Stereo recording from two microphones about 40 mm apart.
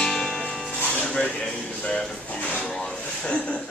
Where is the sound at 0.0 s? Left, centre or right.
Centre.